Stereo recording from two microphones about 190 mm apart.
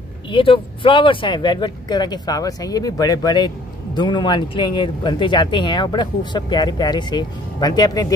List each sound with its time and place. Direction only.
0.3 s speech: 25° left (ahead or behind)